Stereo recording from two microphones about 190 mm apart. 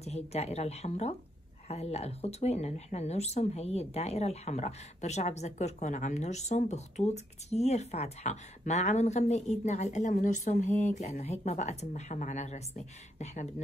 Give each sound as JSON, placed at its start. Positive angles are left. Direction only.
{"t": 0.0, "sound": "speech", "side_deg": 35}